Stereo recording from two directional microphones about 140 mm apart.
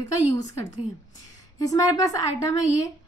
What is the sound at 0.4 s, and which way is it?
A woman's voice, 20° left (ahead or behind).